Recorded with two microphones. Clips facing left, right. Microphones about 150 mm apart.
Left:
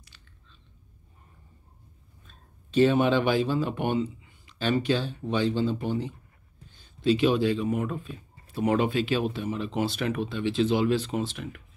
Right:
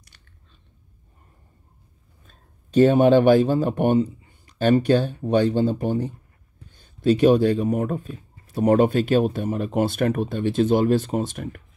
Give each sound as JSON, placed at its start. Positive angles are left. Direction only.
{"t": 2.2, "sound": "speech", "side_deg": -45}